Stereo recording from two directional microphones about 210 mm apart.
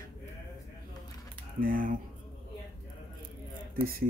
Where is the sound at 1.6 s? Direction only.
40° right (ahead or behind).